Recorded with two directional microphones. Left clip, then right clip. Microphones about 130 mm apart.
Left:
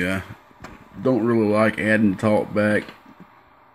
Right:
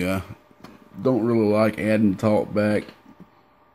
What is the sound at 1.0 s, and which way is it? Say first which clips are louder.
Speech: left 1 dB; 5° right (ahead or behind).